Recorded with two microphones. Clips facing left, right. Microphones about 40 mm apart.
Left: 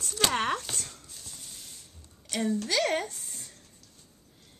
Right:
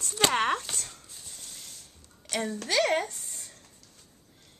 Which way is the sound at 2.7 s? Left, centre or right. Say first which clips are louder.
Right 7 dB; centre.